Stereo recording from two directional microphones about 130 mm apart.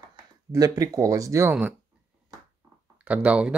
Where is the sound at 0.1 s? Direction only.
25° right (ahead or behind).